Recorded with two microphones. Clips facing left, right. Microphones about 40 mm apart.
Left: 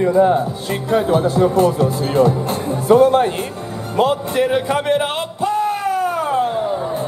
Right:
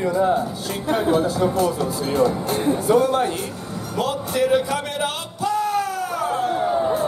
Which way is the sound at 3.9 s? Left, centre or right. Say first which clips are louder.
Left 7 dB; left.